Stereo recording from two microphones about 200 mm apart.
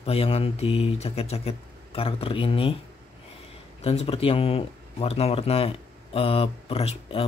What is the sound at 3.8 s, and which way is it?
Speech, 30° left (ahead or behind).